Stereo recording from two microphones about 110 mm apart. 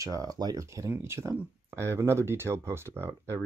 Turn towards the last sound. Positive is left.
turn(degrees=-25)  # may be behind; listen again after turning